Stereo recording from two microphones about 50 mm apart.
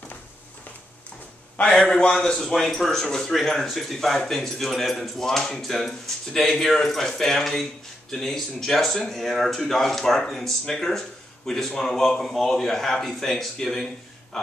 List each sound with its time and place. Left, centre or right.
1.6 s a man's voice: centre
2.2 s speech: centre